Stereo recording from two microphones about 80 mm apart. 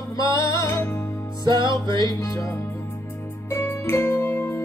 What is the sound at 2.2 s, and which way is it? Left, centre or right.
Speech, left.